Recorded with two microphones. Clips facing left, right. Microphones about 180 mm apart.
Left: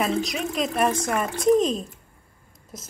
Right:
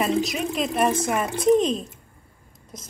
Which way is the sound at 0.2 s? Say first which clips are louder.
Right 1 dB; centre (ahead or behind).